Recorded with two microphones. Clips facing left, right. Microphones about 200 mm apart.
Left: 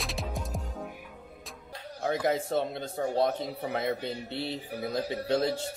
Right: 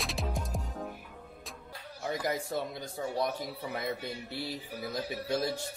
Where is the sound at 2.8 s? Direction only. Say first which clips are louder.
Left 5 dB; 55° left (ahead or behind).